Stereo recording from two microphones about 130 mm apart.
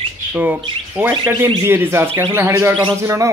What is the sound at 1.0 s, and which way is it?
Bird, 15° right (ahead or behind).